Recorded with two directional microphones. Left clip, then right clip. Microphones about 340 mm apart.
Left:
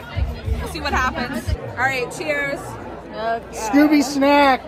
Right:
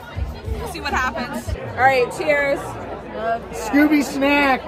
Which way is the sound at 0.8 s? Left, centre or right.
Centre.